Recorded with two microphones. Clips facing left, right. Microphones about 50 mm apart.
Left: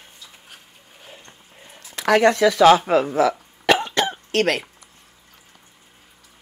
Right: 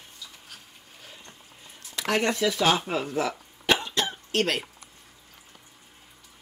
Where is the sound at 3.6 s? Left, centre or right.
Left.